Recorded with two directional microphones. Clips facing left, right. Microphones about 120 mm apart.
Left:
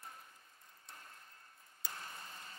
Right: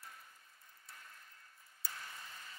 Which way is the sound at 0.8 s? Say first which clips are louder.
Left 1 dB; 35° left (ahead or behind).